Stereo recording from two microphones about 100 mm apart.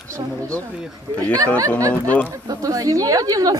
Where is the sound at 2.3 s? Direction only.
35° right (ahead or behind).